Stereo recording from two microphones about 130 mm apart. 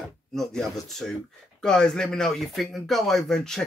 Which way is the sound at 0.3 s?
5° left (ahead or behind).